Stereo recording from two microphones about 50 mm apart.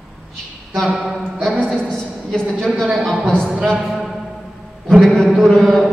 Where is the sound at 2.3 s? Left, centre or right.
Centre.